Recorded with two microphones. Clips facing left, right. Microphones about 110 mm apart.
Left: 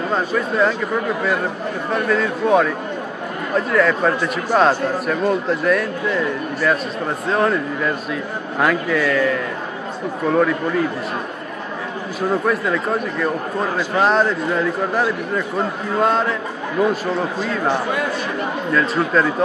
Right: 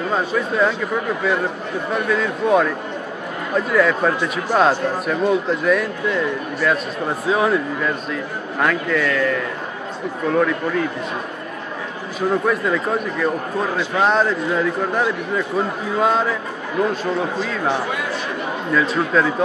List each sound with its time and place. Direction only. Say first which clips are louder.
0.1 s a man's voice: left 1 dB; centre (ahead or behind)
1.9 s a man's voice: left 1 dB; centre (ahead or behind)
12.4 s a man's voice: even; centre (ahead or behind)